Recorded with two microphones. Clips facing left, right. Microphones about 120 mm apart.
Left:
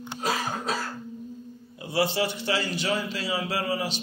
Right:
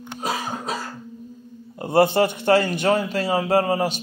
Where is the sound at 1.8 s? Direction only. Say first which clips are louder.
Right 8 dB; 50° right (ahead or behind).